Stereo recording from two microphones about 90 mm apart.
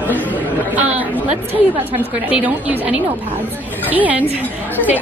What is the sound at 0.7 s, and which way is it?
Speech, 15° right (ahead or behind).